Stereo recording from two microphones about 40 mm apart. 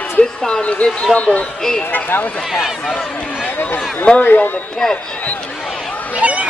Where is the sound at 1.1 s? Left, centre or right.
Left.